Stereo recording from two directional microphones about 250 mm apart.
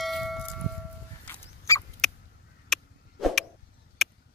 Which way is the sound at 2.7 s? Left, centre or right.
Centre.